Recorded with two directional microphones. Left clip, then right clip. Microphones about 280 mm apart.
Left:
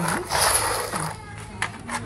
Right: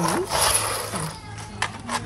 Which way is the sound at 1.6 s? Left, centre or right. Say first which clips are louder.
Right 2 dB; right.